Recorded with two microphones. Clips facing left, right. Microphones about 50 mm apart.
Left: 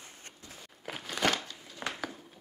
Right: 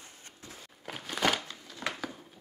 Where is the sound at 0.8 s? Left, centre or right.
Centre.